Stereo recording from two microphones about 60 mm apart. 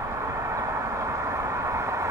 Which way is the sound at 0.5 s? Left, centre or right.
Right.